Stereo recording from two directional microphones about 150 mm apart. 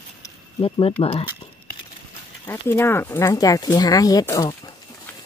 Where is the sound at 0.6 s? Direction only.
35° left (ahead or behind).